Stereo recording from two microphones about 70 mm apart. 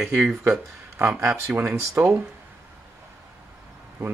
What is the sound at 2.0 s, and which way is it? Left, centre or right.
Speech, right.